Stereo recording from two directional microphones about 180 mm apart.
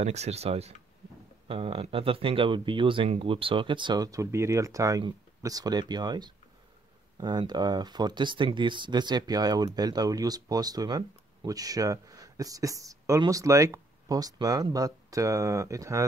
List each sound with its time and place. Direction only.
0.0 s speech: 35° right (ahead or behind); by 16.1 s 20° right (ahead or behind)